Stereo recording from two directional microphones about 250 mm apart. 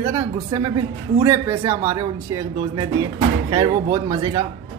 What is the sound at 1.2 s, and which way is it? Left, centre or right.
Speech, centre.